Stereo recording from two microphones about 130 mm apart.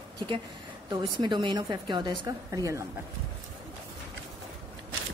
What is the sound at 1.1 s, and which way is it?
A woman's voice, 35° right (ahead or behind).